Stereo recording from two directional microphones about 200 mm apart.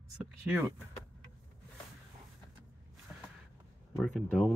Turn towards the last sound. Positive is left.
turn(degrees=0)  # may be behind; listen again after turning